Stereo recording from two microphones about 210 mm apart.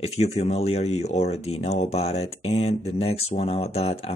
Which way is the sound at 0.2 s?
30° left (ahead or behind).